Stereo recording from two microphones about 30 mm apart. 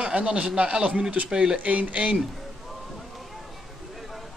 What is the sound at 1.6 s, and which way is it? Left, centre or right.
Speech, right.